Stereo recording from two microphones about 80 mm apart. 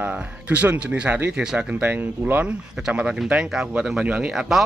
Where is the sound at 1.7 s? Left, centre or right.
Right.